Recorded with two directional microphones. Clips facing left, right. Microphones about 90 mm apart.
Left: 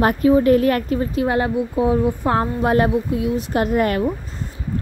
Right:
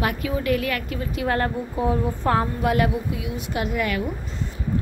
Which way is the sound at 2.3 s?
30° left (ahead or behind).